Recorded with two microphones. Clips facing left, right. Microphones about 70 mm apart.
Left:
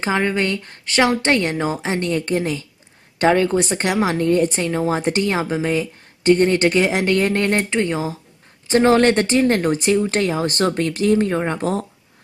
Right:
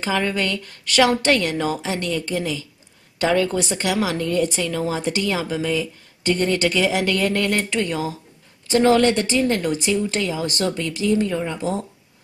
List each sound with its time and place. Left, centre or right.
0.0 s a woman's voice: left